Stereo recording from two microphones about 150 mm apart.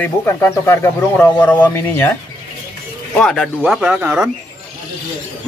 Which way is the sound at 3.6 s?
5° right (ahead or behind).